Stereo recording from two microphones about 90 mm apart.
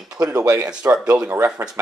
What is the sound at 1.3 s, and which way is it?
Speech, 25° right (ahead or behind).